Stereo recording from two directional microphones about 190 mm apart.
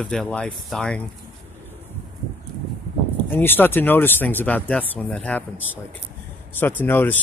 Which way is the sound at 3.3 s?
10° left (ahead or behind).